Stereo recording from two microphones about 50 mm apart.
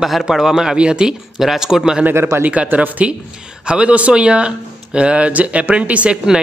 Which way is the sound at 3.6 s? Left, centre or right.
Right.